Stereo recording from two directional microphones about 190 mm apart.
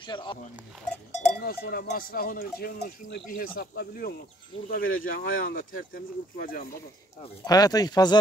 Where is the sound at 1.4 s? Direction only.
55° left (ahead or behind).